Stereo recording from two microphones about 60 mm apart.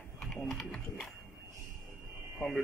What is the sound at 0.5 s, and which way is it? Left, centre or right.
Speech, centre.